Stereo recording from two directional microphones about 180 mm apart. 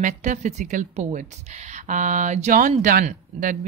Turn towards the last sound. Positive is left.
turn(degrees=-45)  # may be behind; listen again after turning